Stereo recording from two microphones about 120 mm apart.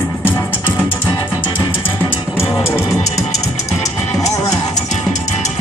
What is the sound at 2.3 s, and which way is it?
Music, 20° left (ahead or behind).